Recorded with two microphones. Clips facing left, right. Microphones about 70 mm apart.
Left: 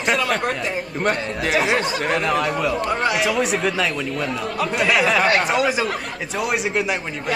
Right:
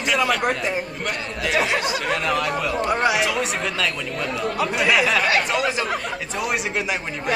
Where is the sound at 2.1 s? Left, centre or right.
Centre.